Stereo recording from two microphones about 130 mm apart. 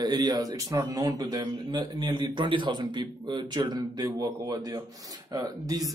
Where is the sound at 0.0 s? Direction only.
30° right (ahead or behind).